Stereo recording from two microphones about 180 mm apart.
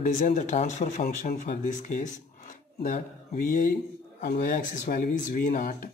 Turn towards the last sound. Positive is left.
turn(degrees=50)  # may be behind; listen again after turning